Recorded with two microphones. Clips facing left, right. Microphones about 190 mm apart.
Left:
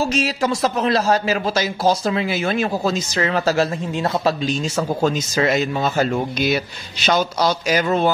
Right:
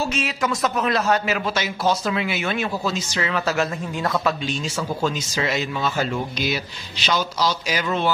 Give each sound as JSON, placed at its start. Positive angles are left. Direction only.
{"t": 0.0, "sound": "a man's voice", "side_deg": 35}
{"t": 4.7, "sound": "speech", "side_deg": 50}